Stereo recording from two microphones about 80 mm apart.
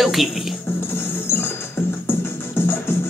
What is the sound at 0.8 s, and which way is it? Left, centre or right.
Music, left.